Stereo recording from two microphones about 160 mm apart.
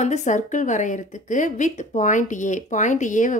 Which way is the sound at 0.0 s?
45° left (ahead or behind).